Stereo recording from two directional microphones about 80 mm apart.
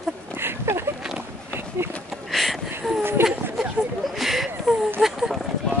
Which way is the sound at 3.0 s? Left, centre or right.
Right.